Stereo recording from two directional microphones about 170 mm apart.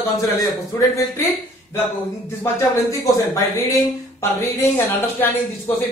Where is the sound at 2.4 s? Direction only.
15° left (ahead or behind).